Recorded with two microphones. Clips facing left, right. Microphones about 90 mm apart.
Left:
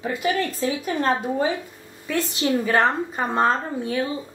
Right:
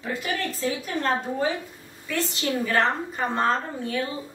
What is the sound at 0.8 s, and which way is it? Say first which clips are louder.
Speech: left 5 dB; 20° left (ahead or behind).